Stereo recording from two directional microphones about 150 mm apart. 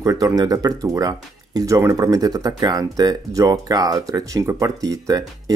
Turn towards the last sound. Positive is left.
turn(degrees=-25)  # may be behind; listen again after turning